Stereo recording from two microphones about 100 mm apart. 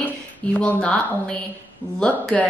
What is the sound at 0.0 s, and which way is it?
Speech, 15° left (ahead or behind).